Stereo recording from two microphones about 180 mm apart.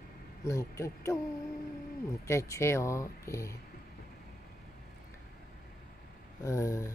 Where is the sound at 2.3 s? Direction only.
15° left (ahead or behind).